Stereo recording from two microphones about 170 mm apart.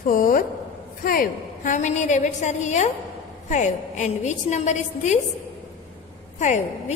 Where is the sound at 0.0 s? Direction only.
55° left (ahead or behind).